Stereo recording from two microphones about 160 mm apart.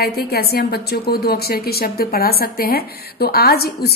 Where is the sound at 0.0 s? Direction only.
75° left (ahead or behind).